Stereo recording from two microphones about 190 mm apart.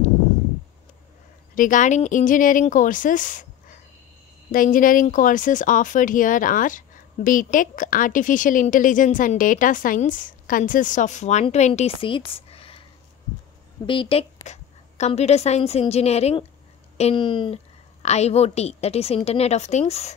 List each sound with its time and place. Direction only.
1.5 s speech: 45° left (ahead or behind)
13.8 s a woman's voice: 30° left (ahead or behind)